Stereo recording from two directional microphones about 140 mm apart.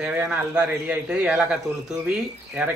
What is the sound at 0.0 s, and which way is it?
A man's voice, 10° right (ahead or behind).